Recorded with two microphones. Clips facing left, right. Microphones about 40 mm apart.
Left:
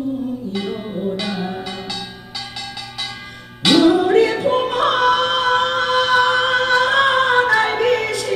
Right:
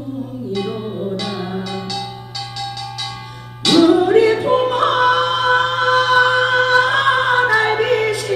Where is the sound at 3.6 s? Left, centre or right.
Centre.